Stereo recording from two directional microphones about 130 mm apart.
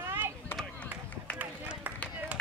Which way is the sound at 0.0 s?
20° right (ahead or behind).